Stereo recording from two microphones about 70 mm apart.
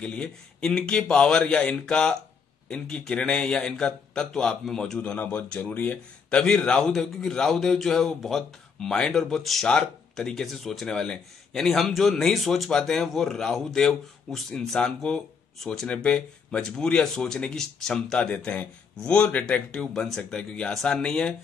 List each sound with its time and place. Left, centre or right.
0.0 s speech: centre
4.9 s speech: centre
15.9 s speech: centre